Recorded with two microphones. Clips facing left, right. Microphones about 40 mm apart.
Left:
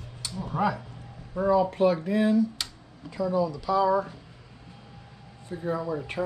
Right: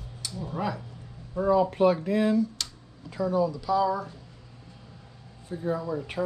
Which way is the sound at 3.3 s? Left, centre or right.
Centre.